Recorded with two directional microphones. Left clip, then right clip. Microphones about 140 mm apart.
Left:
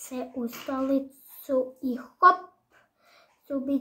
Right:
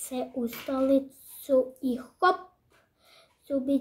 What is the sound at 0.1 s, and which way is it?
Speech, 15° right (ahead or behind).